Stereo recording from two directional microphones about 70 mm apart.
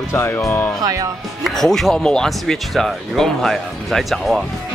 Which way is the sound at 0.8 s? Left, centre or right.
Right.